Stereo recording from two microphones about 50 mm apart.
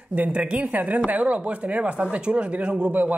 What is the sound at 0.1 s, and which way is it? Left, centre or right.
A man's voice, right.